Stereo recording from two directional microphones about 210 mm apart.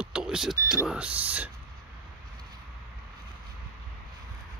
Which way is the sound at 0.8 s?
5° right (ahead or behind).